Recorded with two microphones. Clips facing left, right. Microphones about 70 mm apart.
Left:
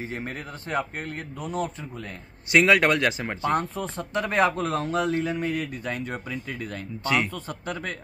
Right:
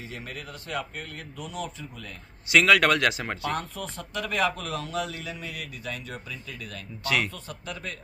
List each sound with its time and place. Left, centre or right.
0.1 s speech: left
2.6 s speech: left
3.4 s speech: left